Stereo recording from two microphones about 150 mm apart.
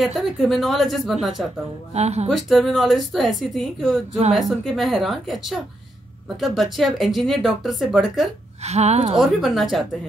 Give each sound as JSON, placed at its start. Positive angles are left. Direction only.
{"t": 0.0, "sound": "a woman's voice", "side_deg": 0}
{"t": 2.0, "sound": "speech", "side_deg": -45}
{"t": 2.2, "sound": "a woman's voice", "side_deg": 0}
{"t": 8.6, "sound": "speech", "side_deg": -45}
{"t": 9.2, "sound": "a woman's voice", "side_deg": 0}